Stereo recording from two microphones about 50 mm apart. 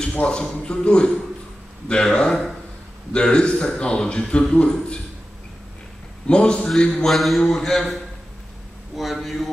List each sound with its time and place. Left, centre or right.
0.0 s a man's voice: centre
6.2 s a man's voice: centre
7.1 s a man's voice: centre